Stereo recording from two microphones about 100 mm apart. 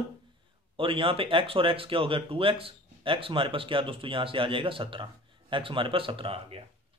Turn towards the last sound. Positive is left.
turn(degrees=-65)  # may be behind; listen again after turning